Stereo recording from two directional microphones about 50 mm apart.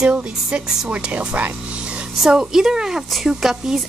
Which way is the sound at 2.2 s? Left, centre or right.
Centre.